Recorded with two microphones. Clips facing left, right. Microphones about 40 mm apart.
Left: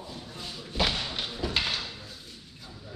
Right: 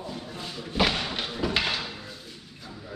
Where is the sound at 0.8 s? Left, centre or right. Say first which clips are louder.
Right 3 dB; right.